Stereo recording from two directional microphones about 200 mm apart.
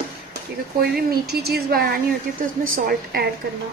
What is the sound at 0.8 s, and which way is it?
A woman's voice, 50° right (ahead or behind).